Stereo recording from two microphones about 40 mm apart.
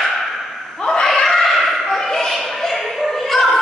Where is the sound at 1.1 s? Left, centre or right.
Centre.